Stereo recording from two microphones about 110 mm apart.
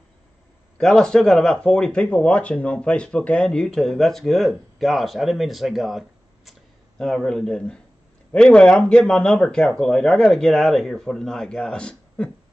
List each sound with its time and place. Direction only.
0.7 s a man's voice: 5° left (ahead or behind)